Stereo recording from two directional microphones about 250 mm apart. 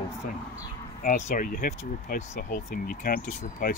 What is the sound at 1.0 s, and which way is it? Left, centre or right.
Speech, left.